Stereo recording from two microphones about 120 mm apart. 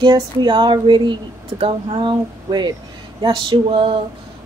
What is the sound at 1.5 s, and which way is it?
Speech, 50° right (ahead or behind).